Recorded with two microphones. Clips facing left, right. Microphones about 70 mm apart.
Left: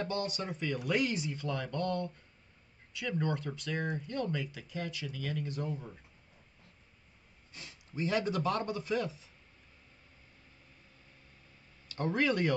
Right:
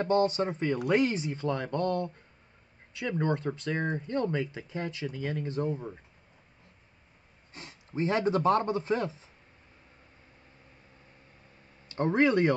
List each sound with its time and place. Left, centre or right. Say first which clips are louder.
0.0 s a man's voice: right 10 dB; right
7.5 s a man's voice: right 6 dB; right
11.9 s speech: right 6 dB; right